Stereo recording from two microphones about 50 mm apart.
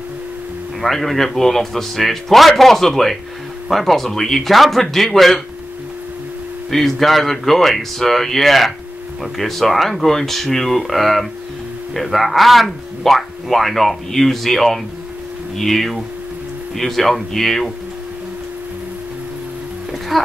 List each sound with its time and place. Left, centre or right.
0.7 s speech: centre
6.7 s speech: centre
20.1 s speech: centre